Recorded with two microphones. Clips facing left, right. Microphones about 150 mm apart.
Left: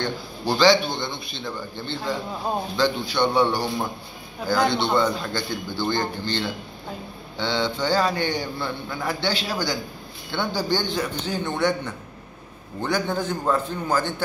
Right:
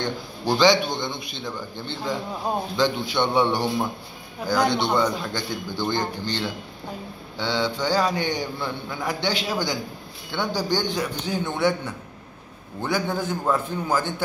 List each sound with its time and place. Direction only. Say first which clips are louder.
0.0 s a man's voice: even; 15° right (ahead or behind)
2.8 s a man's voice: left 1 dB; 20° right (ahead or behind)